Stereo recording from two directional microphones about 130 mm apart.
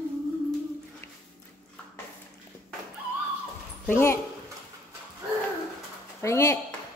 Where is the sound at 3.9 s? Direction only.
20° left (ahead or behind).